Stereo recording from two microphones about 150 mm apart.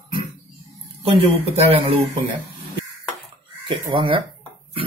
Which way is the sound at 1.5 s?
40° right (ahead or behind).